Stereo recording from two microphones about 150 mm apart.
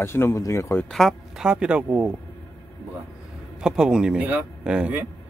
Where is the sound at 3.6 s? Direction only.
5° right (ahead or behind).